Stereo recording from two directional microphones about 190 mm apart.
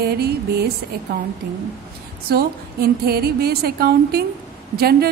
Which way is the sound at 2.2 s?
55° right (ahead or behind).